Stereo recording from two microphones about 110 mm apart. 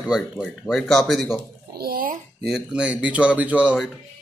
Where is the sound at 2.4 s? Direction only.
5° right (ahead or behind).